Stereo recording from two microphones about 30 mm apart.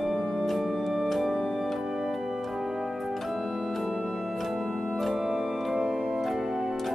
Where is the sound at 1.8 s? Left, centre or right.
Centre.